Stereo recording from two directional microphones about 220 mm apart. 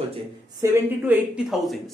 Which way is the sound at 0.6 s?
5° right (ahead or behind).